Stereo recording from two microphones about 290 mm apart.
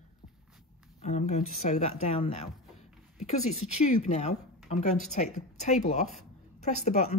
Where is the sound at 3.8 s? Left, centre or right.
Left.